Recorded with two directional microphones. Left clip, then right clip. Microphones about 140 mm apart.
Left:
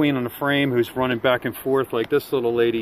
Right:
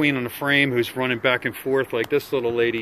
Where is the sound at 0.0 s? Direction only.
35° left (ahead or behind).